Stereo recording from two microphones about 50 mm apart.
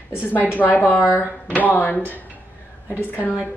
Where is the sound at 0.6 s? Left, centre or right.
Left.